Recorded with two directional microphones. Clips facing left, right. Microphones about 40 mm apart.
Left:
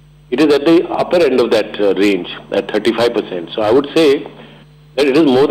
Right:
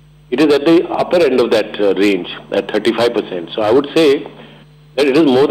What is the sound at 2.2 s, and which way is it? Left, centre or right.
A man's voice, centre.